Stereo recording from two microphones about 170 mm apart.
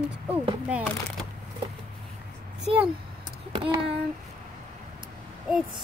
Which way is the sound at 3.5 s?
30° right (ahead or behind).